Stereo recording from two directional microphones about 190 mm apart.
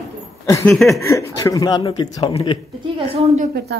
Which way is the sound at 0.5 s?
15° left (ahead or behind).